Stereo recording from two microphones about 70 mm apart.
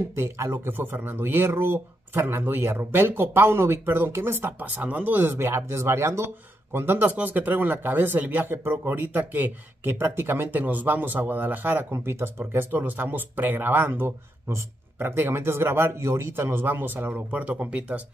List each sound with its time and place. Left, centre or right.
0.1 s speech: right
0.7 s speech: right